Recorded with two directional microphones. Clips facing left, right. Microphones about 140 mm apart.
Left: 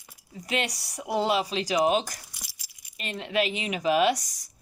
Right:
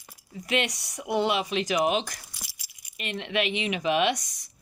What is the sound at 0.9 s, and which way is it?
Speech, 35° left (ahead or behind).